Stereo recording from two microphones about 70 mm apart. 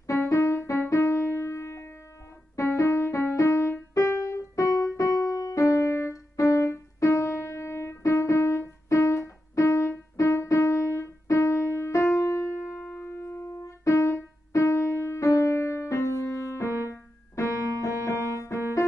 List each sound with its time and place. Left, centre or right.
0.0 s music: left
12.9 s keyboard: left
17.4 s music: left